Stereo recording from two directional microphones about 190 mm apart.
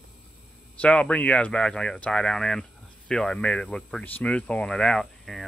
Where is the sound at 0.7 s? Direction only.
5° left (ahead or behind).